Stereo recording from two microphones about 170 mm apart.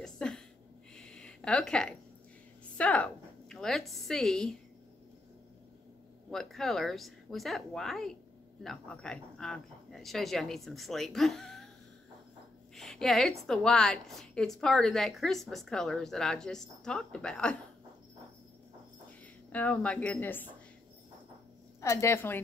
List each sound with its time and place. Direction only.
0.0 s a sound: 5° left (ahead or behind)
2.8 s a woman's voice: 5° left (ahead or behind)
6.3 s a woman's voice: centre (ahead or behind)
12.7 s a woman's voice: centre (ahead or behind)
19.5 s speech: 10° left (ahead or behind)
21.8 s speech: 15° left (ahead or behind)